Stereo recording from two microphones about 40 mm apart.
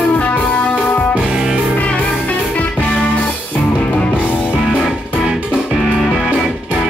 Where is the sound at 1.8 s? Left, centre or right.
Left.